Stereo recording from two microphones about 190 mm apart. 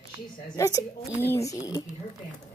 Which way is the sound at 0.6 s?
15° left (ahead or behind).